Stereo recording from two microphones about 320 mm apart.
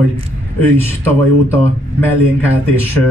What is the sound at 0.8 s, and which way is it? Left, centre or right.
Speech, centre.